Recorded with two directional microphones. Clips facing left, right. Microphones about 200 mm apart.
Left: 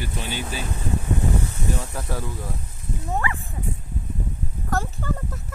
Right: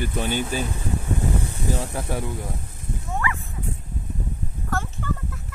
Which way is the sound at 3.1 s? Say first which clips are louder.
Left 1 dB; 30° left (ahead or behind).